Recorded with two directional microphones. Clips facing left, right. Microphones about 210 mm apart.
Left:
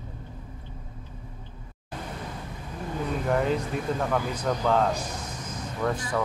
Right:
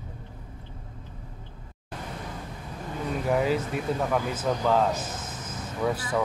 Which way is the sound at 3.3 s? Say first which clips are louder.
Right 1 dB; 5° right (ahead or behind).